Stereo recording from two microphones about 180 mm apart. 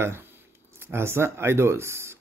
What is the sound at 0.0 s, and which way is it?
Speech, 15° right (ahead or behind).